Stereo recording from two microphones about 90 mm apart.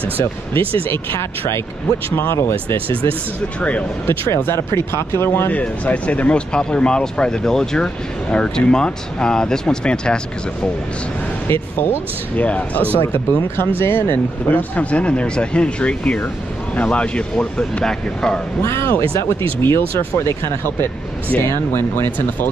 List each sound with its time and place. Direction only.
0.6 s speech: 85° right
0.9 s speech: 25° left (ahead or behind)
2.9 s speech: 80° right
4.4 s speech: 25° left (ahead or behind)
5.5 s speech: 15° left (ahead or behind)
11.4 s speech: 25° left (ahead or behind)
13.0 s speech: 30° left (ahead or behind); by 18.4 s 5° left (ahead or behind)
18.6 s speech: 25° left (ahead or behind)
21.4 s speech: 25° left (ahead or behind)